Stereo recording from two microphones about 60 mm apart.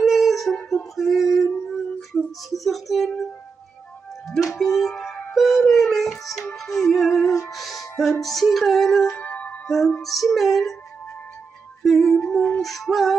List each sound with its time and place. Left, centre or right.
0.0 s music: centre
0.7 s female singing: centre
4.6 s music: centre
9.2 s music: left
9.7 s music: centre
11.8 s music: centre